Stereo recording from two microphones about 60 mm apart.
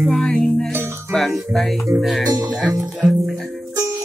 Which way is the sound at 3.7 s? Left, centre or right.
Right.